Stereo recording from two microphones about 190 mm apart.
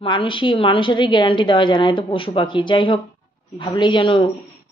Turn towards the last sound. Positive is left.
turn(degrees=25)  # may be behind; listen again after turning